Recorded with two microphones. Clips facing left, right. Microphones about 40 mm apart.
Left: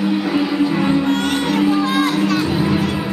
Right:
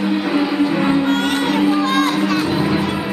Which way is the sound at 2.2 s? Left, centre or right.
Centre.